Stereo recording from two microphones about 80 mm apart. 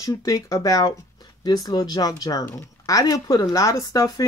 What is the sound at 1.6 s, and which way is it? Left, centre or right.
Speech, left.